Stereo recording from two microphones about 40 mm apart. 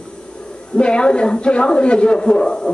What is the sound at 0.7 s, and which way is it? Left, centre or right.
A man's voice, left.